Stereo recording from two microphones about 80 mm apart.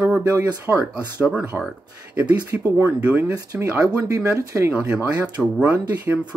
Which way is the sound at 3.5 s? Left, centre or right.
Right.